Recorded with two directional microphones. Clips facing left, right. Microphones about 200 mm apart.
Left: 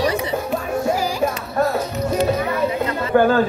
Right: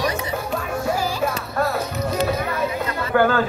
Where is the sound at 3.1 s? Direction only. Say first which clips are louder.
Left 3 dB; 20° left (ahead or behind).